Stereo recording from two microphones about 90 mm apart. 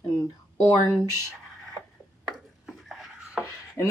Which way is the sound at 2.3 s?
Centre (ahead or behind).